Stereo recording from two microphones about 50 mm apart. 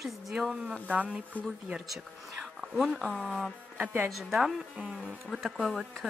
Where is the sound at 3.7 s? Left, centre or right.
Right.